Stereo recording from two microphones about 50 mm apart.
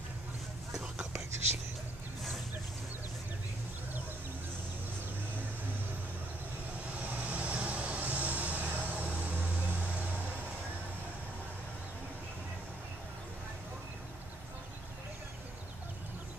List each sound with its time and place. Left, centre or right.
1.1 s whispering: right
7.0 s vehicle: right